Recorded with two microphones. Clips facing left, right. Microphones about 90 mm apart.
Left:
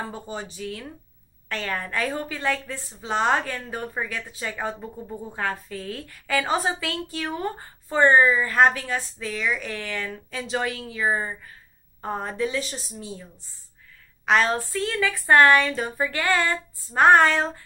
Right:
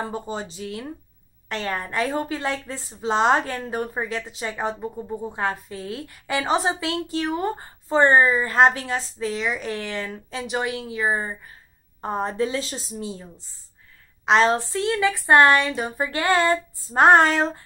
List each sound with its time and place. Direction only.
0.0 s a woman's voice: 25° right (ahead or behind)